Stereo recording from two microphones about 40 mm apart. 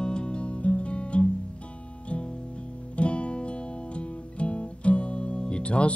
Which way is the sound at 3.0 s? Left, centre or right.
Left.